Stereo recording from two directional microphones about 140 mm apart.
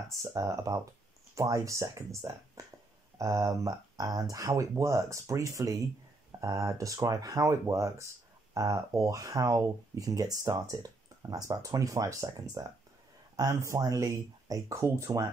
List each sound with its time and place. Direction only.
0.1 s speech: 20° right (ahead or behind)
2.6 s burping: 20° right (ahead or behind)
3.2 s speech: 25° right (ahead or behind)